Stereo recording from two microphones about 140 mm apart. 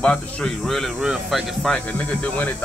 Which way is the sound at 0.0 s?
5° left (ahead or behind).